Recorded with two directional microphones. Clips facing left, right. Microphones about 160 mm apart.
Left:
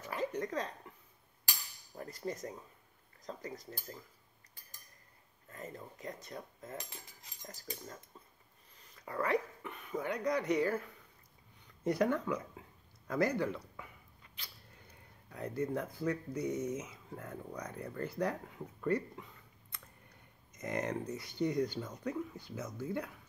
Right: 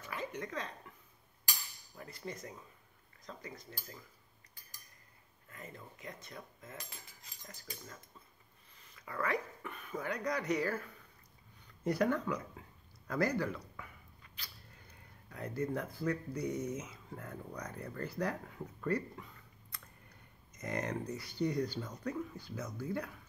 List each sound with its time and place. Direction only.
0.1 s speech: 35° left (ahead or behind)
2.0 s cutlery: 40° left (ahead or behind)
5.5 s cutlery: 40° left (ahead or behind)
8.9 s speech: 30° left (ahead or behind)
11.8 s speech: 20° left (ahead or behind)
12.6 s a sound: 20° left (ahead or behind)
15.2 s speech: 25° left (ahead or behind)
19.7 s a sound: 25° left (ahead or behind)
20.5 s speech: 25° left (ahead or behind)